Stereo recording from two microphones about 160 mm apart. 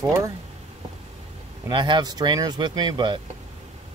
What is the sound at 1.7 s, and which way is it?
Speech, 30° right (ahead or behind).